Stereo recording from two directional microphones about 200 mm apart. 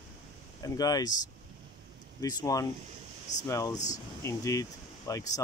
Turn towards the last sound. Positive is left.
turn(degrees=15)  # may be behind; listen again after turning